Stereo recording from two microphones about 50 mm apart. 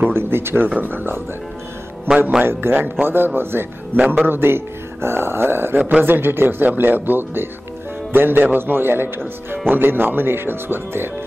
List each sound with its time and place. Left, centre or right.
0.1 s speech: right
0.7 s speech: right
2.4 s speech: right